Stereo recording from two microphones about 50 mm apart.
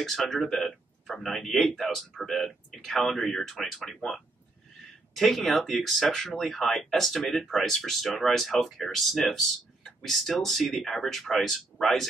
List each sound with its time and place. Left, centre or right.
0.0 s speech: centre